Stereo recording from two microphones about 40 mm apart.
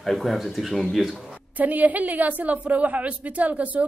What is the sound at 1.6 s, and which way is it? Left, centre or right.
A woman's voice, right.